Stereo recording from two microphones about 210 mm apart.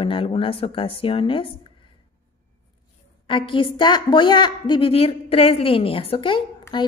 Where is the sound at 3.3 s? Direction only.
25° left (ahead or behind).